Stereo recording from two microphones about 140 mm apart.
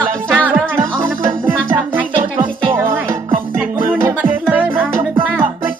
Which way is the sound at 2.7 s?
15° right (ahead or behind).